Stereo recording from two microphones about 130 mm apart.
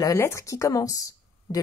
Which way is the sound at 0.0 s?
25° left (ahead or behind).